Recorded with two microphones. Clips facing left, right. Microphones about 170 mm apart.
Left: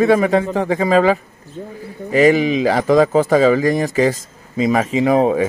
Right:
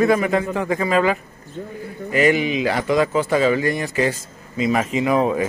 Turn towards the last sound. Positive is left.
turn(degrees=35)  # may be behind; listen again after turning